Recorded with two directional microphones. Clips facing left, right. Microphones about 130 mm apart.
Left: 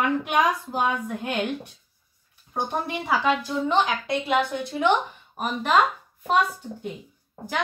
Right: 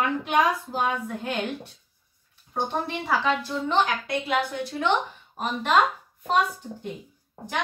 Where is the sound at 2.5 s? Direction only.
10° left (ahead or behind).